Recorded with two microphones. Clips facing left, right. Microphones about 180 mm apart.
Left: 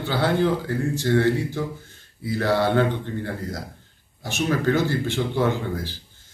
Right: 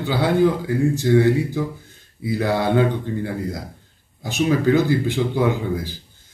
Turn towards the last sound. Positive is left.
turn(degrees=-10)  # may be behind; listen again after turning